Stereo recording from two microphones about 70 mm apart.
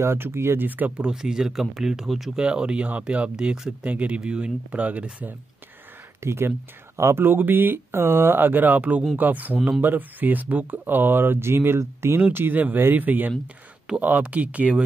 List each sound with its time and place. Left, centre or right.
0.0 s speech: right; by 2.3 s centre
2.3 s speech: centre
6.2 s speech: right